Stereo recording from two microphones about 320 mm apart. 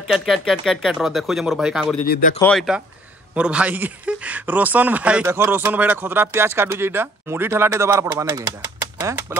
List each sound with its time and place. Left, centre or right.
0.1 s speech: centre
2.0 s speech: left
2.3 s speech: centre